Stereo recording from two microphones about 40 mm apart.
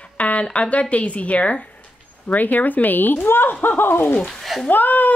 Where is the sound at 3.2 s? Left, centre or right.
Left.